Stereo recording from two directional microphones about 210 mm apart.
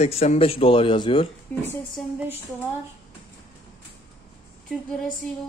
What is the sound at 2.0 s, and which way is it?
Speech, 5° right (ahead or behind).